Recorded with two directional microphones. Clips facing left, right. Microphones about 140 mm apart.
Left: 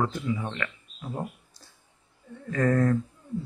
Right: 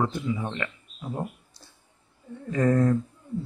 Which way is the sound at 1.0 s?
5° right (ahead or behind).